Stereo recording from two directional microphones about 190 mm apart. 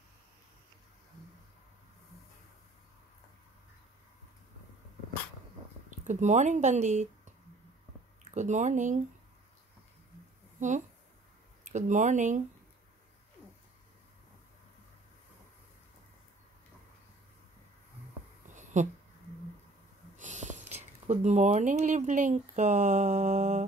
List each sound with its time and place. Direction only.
5.9 s speech: 40° right (ahead or behind)
8.2 s speech: 40° right (ahead or behind)
10.6 s a woman's voice: 40° right (ahead or behind)
18.5 s a sound: 40° right (ahead or behind)
20.2 s speech: 40° right (ahead or behind)